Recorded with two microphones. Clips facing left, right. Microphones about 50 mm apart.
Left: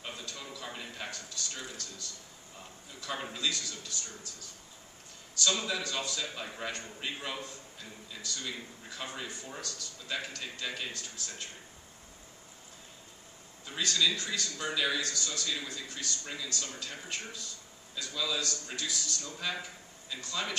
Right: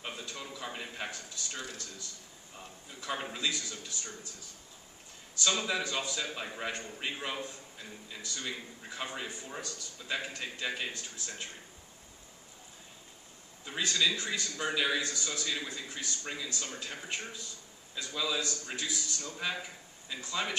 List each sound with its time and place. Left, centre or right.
0.0 s a sound: centre
0.9 s speech: centre
3.0 s a man's voice: centre
5.3 s a man's voice: centre
13.7 s a man's voice: centre